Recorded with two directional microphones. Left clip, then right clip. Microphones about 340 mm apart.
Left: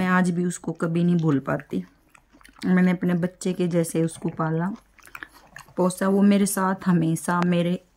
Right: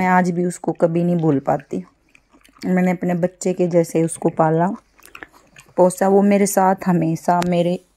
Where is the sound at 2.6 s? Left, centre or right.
Centre.